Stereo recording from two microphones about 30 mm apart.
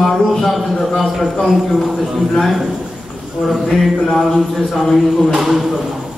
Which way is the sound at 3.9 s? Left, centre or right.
Centre.